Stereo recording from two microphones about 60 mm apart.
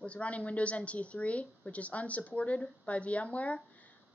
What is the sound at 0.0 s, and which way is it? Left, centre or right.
A woman's voice, left.